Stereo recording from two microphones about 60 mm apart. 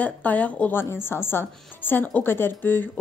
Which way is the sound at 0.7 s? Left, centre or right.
Left.